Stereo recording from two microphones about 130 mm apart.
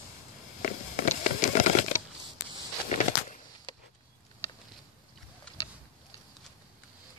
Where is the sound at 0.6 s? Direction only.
65° left (ahead or behind).